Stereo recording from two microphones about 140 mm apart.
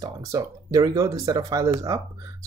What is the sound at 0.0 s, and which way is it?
Speech, 25° right (ahead or behind).